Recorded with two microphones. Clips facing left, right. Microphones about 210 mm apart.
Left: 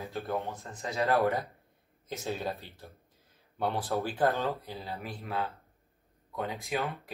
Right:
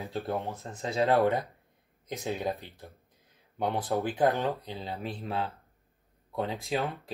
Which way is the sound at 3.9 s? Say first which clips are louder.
Right 3 dB; 15° right (ahead or behind).